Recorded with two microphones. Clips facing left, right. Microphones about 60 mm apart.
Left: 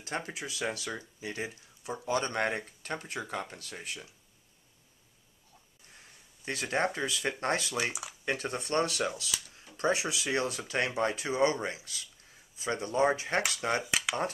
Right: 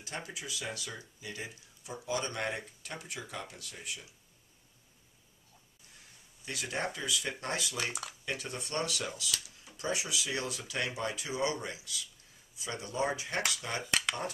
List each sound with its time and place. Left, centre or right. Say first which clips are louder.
0.0 s speech: left 5 dB; left
6.4 s speech: left 6 dB; left
7.7 s speech: left 4 dB; centre
8.3 s speech: left 7 dB; left
13.8 s speech: even; centre